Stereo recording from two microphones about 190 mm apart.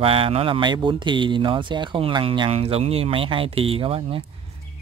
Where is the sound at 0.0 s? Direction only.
30° right (ahead or behind).